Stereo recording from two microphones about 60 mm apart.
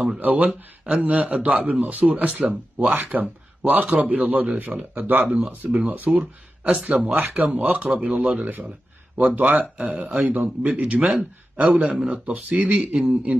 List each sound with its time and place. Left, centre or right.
0.2 s speech: right
5.2 s speech: centre
5.5 s speech: right
6.1 s speech: centre
8.4 s speech: right
9.2 s speech: right
12.1 s speech: right